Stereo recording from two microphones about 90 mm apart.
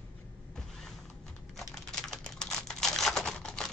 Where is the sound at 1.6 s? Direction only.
Centre (ahead or behind).